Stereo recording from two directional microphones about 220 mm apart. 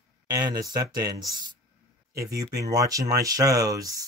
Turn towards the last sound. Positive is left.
turn(degrees=-15)  # may be behind; listen again after turning